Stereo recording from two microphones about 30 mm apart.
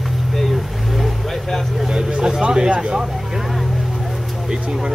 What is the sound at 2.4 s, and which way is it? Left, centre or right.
Speech, right.